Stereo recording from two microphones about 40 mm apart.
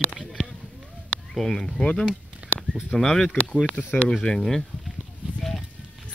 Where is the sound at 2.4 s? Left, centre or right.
Right.